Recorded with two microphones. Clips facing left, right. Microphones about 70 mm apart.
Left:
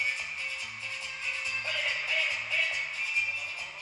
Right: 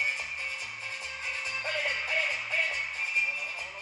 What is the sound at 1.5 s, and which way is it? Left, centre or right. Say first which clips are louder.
Music: right 2 dB; right.